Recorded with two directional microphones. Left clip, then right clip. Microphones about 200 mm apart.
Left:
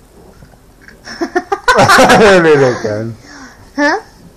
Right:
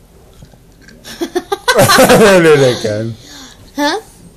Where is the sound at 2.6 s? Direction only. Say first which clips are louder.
Even; 15° right (ahead or behind).